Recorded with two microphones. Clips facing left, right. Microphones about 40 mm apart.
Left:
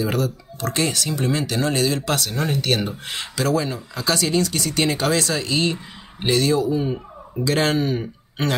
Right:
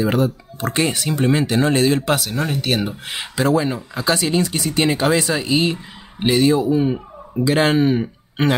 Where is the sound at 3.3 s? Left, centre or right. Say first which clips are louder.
Right 4 dB; right.